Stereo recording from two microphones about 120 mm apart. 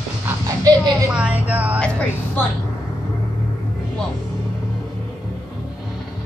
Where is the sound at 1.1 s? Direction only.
10° right (ahead or behind).